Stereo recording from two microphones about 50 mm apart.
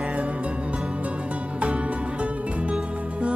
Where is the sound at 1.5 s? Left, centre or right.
Right.